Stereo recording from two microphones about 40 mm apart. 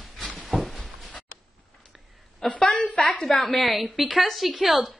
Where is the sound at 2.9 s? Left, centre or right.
Left.